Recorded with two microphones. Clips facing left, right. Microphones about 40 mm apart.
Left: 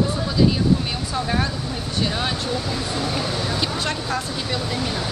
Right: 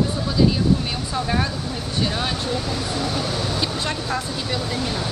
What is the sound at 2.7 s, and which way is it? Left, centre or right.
Speech, centre.